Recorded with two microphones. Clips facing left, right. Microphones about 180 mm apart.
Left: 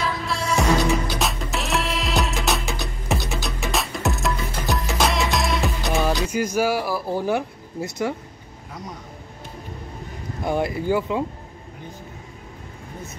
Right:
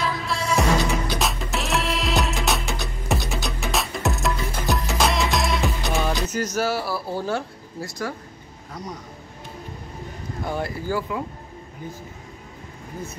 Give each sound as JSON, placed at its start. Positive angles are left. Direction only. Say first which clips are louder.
{"t": 0.0, "sound": "music", "louder": "even", "side_deg": 0}
{"t": 6.2, "sound": "speech", "louder": "left 3 dB", "side_deg": 10}
{"t": 10.4, "sound": "speech", "louder": "left 5 dB", "side_deg": 20}